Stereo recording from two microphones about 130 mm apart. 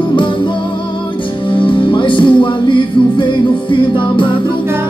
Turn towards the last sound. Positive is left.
turn(degrees=40)  # may be behind; listen again after turning